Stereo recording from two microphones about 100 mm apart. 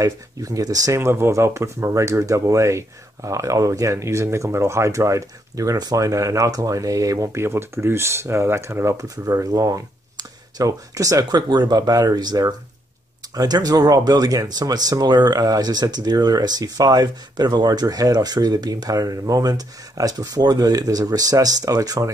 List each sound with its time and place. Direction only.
0.0 s speech: 35° right (ahead or behind)